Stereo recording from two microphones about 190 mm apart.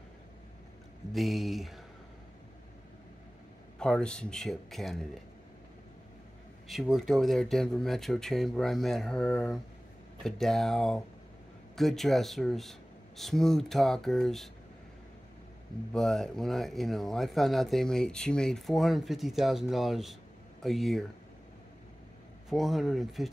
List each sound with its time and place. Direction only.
1.1 s speech: centre (ahead or behind)
3.8 s speech: 5° left (ahead or behind)
6.7 s speech: centre (ahead or behind)
15.9 s speech: centre (ahead or behind)
22.5 s speech: centre (ahead or behind)